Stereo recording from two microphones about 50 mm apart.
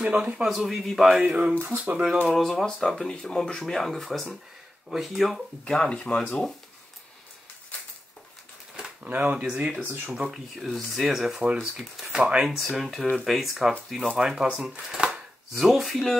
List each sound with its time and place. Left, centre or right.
0.0 s speech: right
0.5 s a man's voice: centre
1.2 s speech: right
1.6 s speech: right
2.2 s speech: centre
3.0 s speech: centre
5.7 s speech: centre
9.0 s speech: right
10.1 s a man's voice: centre
10.5 s speech: centre
12.1 s speech: centre
12.4 s a man's voice: centre
15.0 s chopping: centre